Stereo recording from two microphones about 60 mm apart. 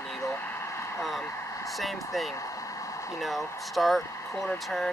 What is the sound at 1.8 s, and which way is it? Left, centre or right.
Speech, centre.